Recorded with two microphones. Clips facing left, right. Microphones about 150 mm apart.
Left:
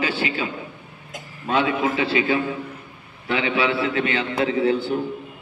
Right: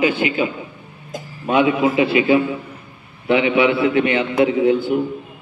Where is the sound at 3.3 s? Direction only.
20° right (ahead or behind).